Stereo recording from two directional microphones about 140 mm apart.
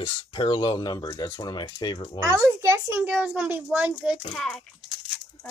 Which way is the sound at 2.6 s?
20° right (ahead or behind).